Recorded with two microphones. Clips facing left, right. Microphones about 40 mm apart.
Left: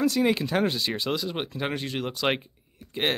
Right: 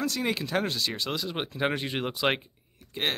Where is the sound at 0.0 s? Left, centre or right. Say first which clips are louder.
Left 6 dB; centre.